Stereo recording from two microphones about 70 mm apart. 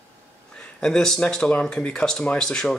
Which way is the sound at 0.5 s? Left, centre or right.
Centre.